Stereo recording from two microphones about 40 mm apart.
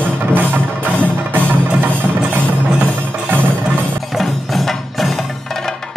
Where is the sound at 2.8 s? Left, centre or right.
Right.